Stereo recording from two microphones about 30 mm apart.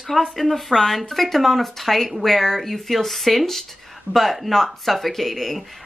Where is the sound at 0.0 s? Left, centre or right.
Centre.